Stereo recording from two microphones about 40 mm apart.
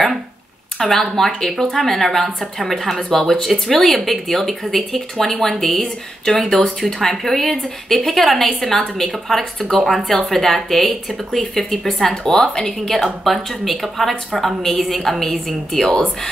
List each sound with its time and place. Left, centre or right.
0.7 s a woman's voice: centre
12.1 s a woman's voice: centre